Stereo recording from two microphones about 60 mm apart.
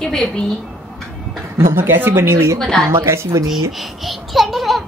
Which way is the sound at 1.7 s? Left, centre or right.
Right.